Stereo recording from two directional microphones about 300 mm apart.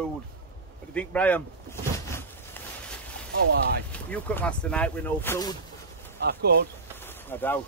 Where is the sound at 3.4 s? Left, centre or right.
Right.